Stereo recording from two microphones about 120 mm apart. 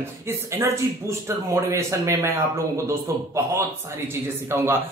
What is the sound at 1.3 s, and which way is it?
Speech, 25° right (ahead or behind).